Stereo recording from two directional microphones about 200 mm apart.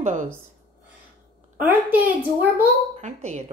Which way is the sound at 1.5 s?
10° right (ahead or behind).